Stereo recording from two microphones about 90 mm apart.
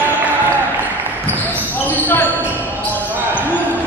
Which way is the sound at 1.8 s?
20° left (ahead or behind).